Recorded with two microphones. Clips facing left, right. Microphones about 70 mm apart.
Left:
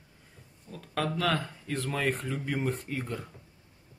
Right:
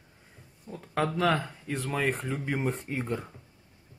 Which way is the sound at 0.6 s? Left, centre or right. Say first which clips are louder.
Right 3 dB; right.